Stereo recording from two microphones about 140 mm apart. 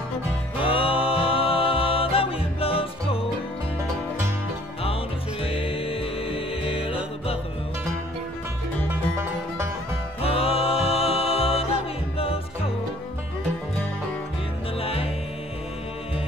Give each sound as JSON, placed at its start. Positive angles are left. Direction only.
{"t": 0.6, "sound": "music", "side_deg": 40}
{"t": 5.4, "sound": "music", "side_deg": 40}
{"t": 10.2, "sound": "music", "side_deg": 45}
{"t": 14.8, "sound": "music", "side_deg": 45}